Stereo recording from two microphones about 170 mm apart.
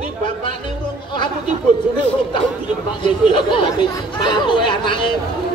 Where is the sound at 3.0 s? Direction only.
30° left (ahead or behind).